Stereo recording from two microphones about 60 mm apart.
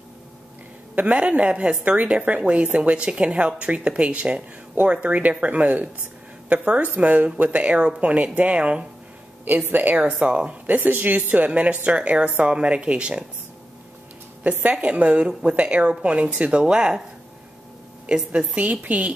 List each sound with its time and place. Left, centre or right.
0.9 s a woman's voice: right
9.7 s a woman's voice: right
14.4 s a woman's voice: right
18.0 s a woman's voice: centre